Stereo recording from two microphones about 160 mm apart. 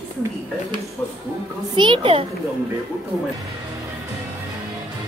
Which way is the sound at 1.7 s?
30° right (ahead or behind).